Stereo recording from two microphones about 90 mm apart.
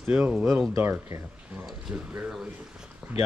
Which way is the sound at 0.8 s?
30° right (ahead or behind).